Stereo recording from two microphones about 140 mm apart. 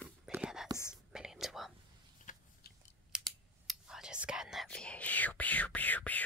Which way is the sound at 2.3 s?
60° left (ahead or behind).